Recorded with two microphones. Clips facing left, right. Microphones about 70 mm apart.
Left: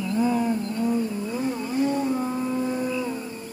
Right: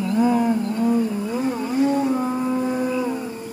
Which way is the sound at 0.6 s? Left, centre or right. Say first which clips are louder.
Right 5 dB; centre.